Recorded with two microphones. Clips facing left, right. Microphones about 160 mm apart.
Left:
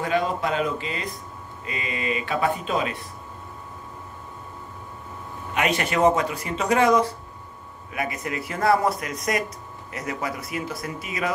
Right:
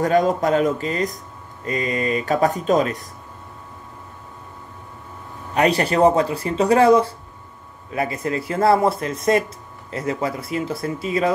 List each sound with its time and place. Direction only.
0.0 s speech: 45° right (ahead or behind)
5.5 s speech: 35° right (ahead or behind)